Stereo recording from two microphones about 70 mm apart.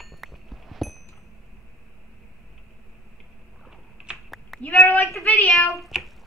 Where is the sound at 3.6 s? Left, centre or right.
Centre.